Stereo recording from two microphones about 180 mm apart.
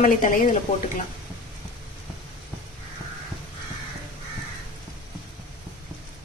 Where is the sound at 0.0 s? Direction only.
50° left (ahead or behind).